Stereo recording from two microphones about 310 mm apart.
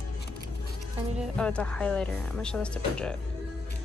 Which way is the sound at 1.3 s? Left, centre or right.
Centre.